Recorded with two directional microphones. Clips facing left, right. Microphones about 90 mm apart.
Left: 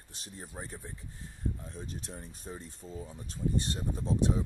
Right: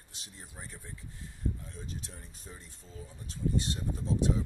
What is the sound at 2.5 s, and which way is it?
Speech, 35° left (ahead or behind).